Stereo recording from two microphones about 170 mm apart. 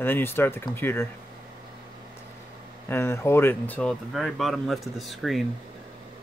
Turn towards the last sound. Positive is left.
turn(degrees=0)  # may be behind; listen again after turning